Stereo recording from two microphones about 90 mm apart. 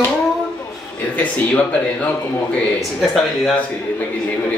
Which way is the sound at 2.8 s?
Centre (ahead or behind).